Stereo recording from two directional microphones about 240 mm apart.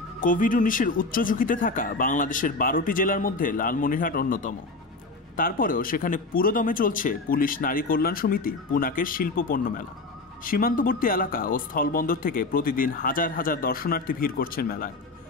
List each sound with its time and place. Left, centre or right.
0.2 s speech: left